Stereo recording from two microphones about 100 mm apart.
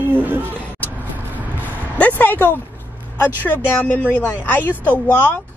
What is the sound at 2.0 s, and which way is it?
Speech, 20° left (ahead or behind).